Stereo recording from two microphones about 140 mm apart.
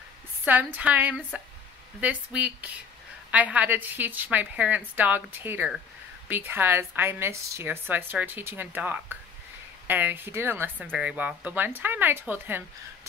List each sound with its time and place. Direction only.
0.5 s a woman's voice: 10° right (ahead or behind)